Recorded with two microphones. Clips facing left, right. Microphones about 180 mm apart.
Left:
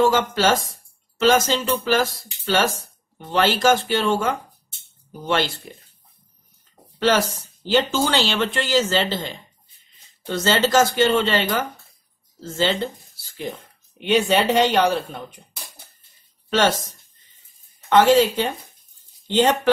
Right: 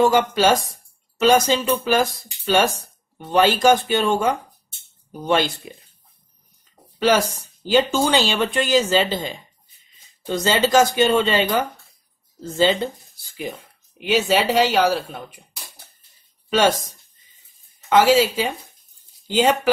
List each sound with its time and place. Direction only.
0.0 s speech: 15° right (ahead or behind)
7.0 s speech: 10° right (ahead or behind)
13.9 s speech: 5° right (ahead or behind)
16.4 s speech: 10° right (ahead or behind)
17.8 s speech: 10° right (ahead or behind)